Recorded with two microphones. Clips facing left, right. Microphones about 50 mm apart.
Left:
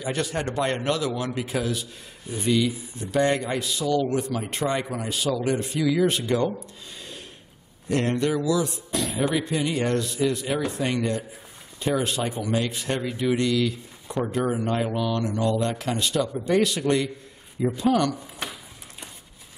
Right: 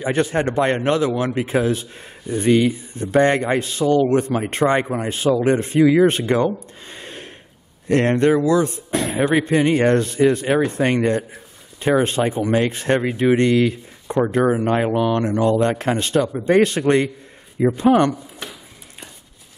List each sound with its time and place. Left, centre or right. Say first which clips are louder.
0.0 s speech: right 8 dB; right
2.2 s speech: right 7 dB; right